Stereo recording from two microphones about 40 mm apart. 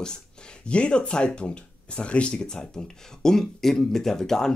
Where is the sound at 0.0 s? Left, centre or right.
Left.